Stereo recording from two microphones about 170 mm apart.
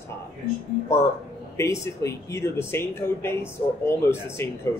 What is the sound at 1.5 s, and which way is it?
Speech, 15° left (ahead or behind).